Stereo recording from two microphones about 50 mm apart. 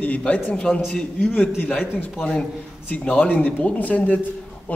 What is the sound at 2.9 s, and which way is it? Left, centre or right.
A man's voice, left.